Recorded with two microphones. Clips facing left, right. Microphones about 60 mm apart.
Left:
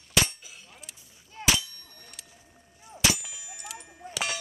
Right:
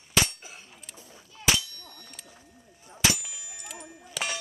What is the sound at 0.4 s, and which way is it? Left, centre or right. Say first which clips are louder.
Clang: right 3 dB; right.